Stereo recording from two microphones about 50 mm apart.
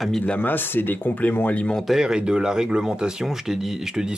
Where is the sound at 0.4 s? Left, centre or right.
Left.